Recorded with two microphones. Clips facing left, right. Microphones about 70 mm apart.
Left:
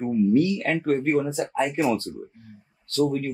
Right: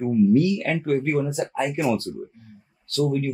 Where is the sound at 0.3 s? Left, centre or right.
Left.